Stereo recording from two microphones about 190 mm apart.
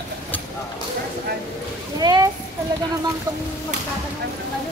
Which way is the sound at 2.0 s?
20° right (ahead or behind).